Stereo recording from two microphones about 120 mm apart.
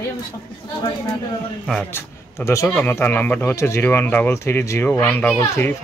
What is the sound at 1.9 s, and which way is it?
A man's voice, 25° left (ahead or behind).